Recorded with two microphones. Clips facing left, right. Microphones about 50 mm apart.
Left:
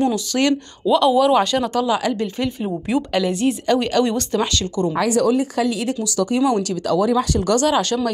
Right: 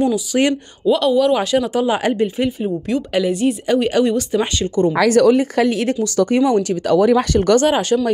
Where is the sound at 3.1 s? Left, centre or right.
Centre.